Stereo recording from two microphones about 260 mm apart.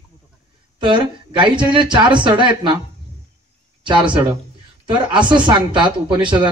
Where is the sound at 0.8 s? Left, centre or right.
Centre.